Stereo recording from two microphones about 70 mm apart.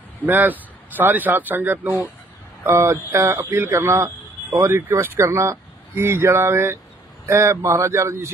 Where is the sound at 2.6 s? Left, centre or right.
Right.